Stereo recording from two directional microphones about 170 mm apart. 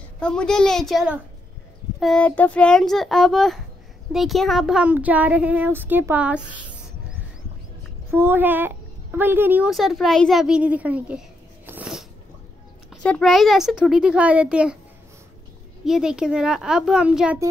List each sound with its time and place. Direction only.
0.2 s a child's voice: 5° left (ahead or behind)
8.1 s a child's voice: 15° right (ahead or behind)
9.7 s a woman's voice: centre (ahead or behind)
15.8 s a child's voice: 5° right (ahead or behind)